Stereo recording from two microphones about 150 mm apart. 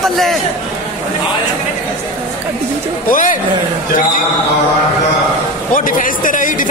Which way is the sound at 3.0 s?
60° left (ahead or behind).